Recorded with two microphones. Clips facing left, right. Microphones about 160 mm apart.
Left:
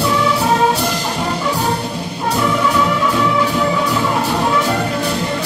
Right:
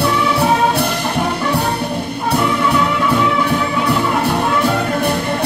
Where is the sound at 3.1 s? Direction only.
60° right (ahead or behind).